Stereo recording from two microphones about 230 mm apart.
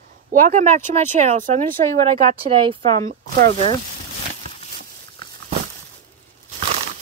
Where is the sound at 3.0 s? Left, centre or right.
Right.